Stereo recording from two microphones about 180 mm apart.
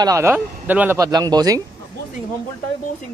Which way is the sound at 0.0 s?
15° right (ahead or behind).